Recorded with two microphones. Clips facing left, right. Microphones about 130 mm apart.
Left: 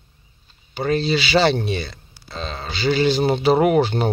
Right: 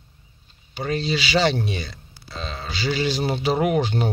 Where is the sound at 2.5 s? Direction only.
55° left (ahead or behind).